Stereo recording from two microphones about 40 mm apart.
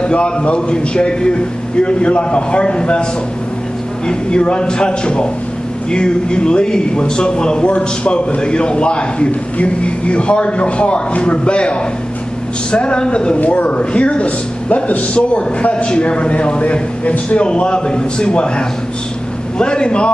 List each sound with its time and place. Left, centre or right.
0.0 s a man's voice: left
4.1 s a man's voice: left
12.7 s a man's voice: left
13.4 s speech: left
17.5 s a man's voice: left